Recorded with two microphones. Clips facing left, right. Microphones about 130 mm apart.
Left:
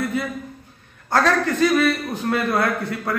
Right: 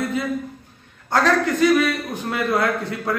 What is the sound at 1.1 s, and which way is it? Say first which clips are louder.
A man's voice: even; 15° right (ahead or behind).